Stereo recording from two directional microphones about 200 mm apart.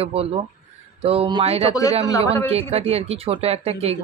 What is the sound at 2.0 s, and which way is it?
Speech, 15° left (ahead or behind).